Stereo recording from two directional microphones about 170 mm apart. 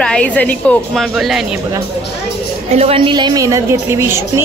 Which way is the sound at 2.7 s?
35° right (ahead or behind).